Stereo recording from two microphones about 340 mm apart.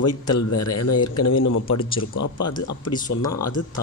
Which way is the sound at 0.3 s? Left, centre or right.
Left.